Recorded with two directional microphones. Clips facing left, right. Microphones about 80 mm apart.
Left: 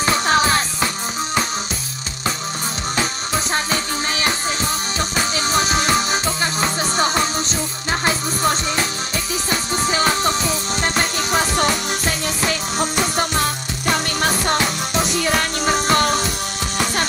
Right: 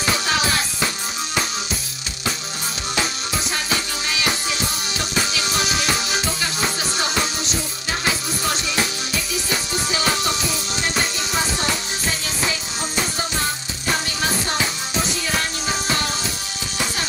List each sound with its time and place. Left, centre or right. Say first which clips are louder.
0.0 s music: left 5 dB; left
3.5 s music: left 3 dB; left
9.8 s music: left 4 dB; left
14.2 s music: left 5 dB; left